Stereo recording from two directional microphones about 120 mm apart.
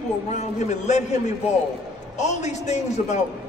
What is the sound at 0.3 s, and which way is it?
A man's voice, 75° left (ahead or behind).